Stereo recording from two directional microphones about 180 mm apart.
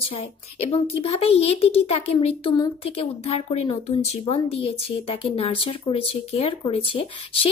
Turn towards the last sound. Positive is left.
turn(degrees=30)  # may be behind; listen again after turning